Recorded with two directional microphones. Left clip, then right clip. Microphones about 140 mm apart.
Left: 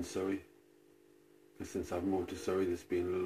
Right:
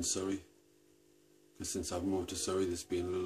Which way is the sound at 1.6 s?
35° right (ahead or behind).